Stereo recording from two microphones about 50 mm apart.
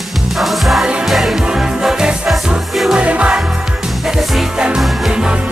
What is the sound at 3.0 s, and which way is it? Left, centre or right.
Music, right.